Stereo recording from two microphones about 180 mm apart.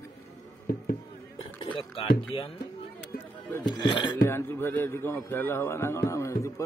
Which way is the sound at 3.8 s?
25° left (ahead or behind).